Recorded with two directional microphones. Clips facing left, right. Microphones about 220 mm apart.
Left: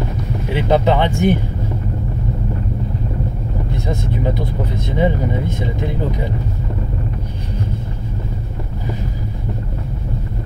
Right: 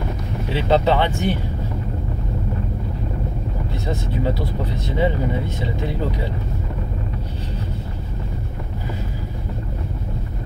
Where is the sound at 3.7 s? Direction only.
15° left (ahead or behind).